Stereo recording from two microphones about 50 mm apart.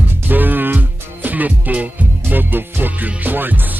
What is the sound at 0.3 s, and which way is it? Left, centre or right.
Speech, right.